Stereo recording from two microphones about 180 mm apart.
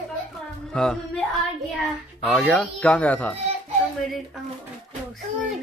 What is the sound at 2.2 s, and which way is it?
Speech, centre (ahead or behind).